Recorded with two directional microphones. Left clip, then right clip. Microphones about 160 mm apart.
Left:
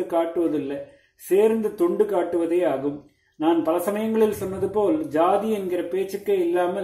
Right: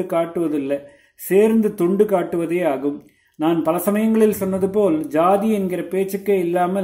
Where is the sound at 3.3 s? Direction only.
35° right (ahead or behind).